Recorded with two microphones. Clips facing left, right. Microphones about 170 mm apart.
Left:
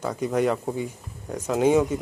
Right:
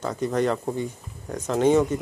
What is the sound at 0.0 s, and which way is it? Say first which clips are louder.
Speech: even; 10° left (ahead or behind).